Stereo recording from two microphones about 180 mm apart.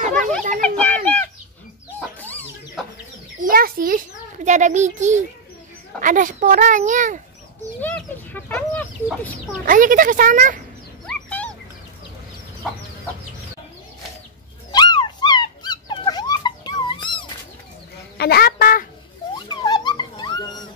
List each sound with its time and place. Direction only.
0.0 s children playing: 45° right (ahead or behind)
0.6 s children playing: 5° left (ahead or behind)
3.4 s a sound: 55° right (ahead or behind)
4.5 s a child's voice: 40° right (ahead or behind)
7.8 s chicken: 10° left (ahead or behind)
9.7 s a child's voice: 50° right (ahead or behind)
11.1 s a sound: 5° left (ahead or behind)
14.7 s dog: 25° left (ahead or behind)
18.1 s speech: 60° left (ahead or behind)
19.3 s dog: 25° left (ahead or behind)